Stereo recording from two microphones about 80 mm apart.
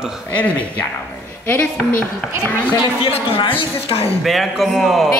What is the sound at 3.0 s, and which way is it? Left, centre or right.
Speech, left.